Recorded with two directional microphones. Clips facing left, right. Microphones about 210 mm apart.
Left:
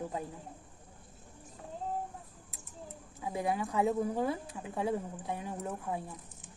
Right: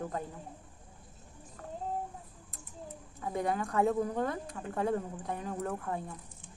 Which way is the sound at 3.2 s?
5° left (ahead or behind).